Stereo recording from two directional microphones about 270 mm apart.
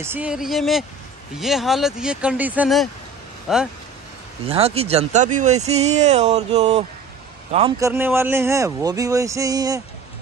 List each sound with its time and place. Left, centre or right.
0.0 s speech: centre
4.5 s speech: right
7.8 s speech: centre